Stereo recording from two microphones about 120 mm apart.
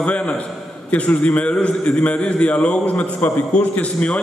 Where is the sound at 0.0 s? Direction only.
10° left (ahead or behind).